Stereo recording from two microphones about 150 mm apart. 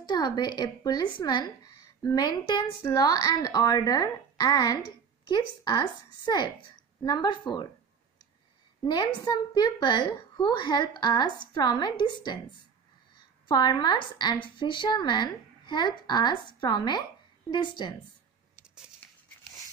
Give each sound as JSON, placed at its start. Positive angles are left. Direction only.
{"t": 0.1, "sound": "a woman's voice", "side_deg": 30}
{"t": 8.8, "sound": "a woman's voice", "side_deg": 30}
{"t": 13.5, "sound": "a woman's voice", "side_deg": 30}